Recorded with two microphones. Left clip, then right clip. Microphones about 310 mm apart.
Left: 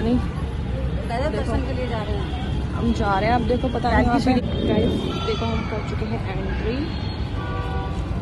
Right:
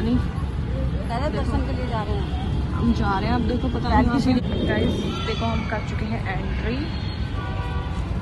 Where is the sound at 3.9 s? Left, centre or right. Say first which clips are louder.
Left 1 dB; right.